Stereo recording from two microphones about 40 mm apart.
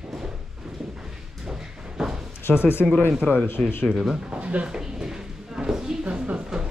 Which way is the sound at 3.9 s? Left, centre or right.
Centre.